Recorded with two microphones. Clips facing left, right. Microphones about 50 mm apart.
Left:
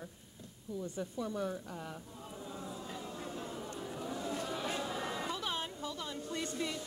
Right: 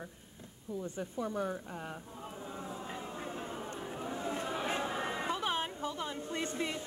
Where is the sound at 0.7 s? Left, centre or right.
Right.